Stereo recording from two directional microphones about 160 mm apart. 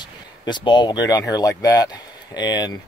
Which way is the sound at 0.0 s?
30° left (ahead or behind).